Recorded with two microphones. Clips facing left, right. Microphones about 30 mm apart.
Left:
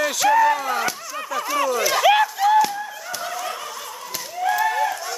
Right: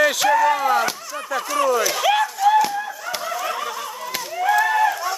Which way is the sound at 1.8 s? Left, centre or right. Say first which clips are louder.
Left 2 dB; centre.